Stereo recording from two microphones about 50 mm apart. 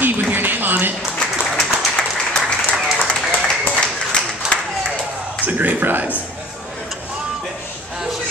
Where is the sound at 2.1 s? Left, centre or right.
Centre.